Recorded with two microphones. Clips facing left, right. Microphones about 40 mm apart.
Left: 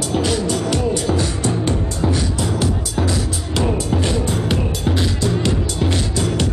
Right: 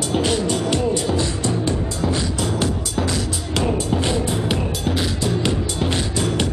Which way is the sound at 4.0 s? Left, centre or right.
Centre.